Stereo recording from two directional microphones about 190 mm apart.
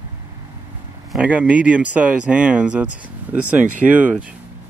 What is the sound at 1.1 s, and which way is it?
Speech, 5° right (ahead or behind).